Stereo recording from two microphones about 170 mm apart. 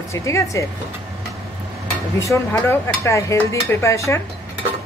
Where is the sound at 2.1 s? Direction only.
15° left (ahead or behind).